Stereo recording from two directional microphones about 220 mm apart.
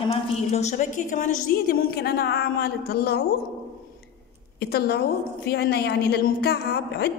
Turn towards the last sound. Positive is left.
turn(degrees=45)  # may be behind; listen again after turning